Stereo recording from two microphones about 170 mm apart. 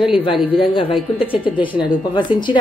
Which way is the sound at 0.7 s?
30° left (ahead or behind).